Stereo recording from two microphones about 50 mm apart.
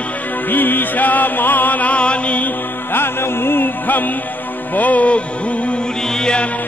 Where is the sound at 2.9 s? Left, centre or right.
Left.